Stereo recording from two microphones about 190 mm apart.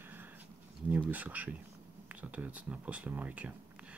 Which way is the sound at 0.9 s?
10° right (ahead or behind).